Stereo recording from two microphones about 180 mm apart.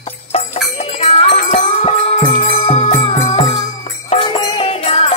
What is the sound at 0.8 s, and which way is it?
Music, 35° left (ahead or behind).